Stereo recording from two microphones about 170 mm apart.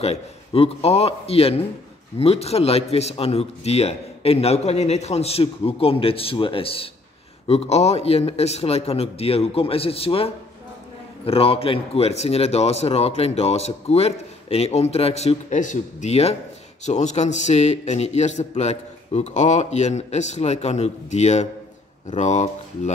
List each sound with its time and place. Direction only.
0.0 s speech: 35° left (ahead or behind)